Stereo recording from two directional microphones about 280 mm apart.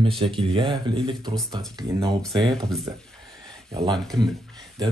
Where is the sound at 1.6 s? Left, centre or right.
Centre.